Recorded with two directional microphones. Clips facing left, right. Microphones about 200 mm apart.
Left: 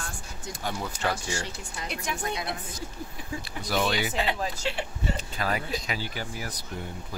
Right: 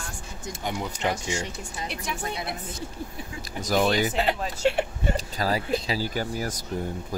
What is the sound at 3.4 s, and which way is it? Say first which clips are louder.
Speech: right 5 dB; 45° right (ahead or behind).